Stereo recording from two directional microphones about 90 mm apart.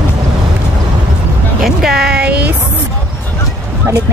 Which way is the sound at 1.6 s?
5° right (ahead or behind).